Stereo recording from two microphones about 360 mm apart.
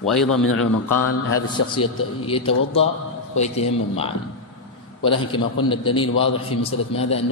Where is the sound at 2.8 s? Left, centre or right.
Centre.